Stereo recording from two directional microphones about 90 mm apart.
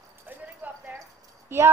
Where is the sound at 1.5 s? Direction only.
25° right (ahead or behind).